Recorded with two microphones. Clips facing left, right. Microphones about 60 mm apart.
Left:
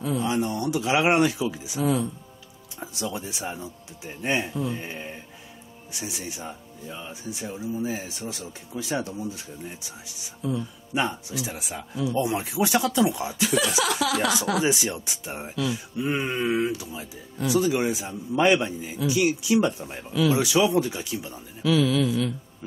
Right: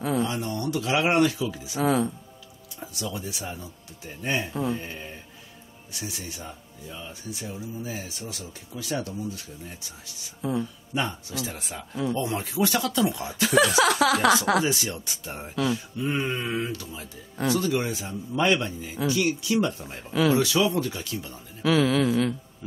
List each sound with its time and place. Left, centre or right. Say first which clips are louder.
0.2 s speech: left 2 dB; centre
1.8 s speech: right 1 dB; right
2.8 s speech: left 2 dB; centre
13.7 s a woman's voice: right 4 dB; right
14.6 s speech: left 2 dB; centre
20.1 s a woman's voice: even; right
20.3 s speech: left 2 dB; centre
21.6 s a woman's voice: even; right